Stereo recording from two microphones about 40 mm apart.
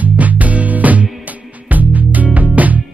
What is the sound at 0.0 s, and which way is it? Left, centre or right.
Music, right.